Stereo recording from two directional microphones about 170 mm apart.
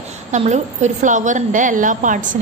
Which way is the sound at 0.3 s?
45° right (ahead or behind).